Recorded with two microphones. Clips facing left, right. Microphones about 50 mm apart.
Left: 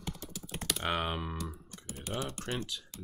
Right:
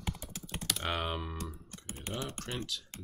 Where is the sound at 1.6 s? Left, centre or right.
Right.